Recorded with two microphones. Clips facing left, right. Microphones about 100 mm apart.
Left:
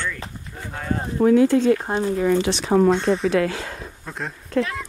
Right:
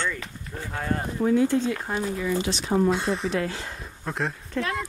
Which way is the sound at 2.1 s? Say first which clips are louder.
Left 7 dB; 60° left (ahead or behind).